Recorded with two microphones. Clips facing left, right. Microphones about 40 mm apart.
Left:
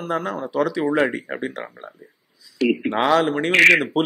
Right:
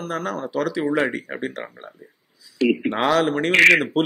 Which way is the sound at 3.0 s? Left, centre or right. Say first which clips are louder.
Left 2 dB; left.